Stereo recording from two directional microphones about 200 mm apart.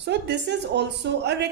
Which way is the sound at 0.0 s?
60° right (ahead or behind).